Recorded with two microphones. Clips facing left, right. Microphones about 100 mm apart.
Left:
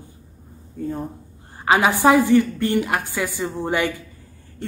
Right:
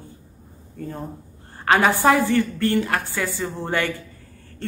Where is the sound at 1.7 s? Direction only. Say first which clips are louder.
Left 1 dB; 10° left (ahead or behind).